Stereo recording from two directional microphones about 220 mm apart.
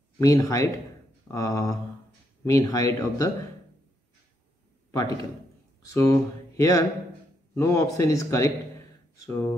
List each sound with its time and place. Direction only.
0.2 s speech: 15° left (ahead or behind)
4.9 s speech: 15° left (ahead or behind)